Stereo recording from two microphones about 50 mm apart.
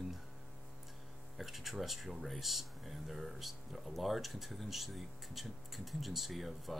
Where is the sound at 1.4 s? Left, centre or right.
Centre.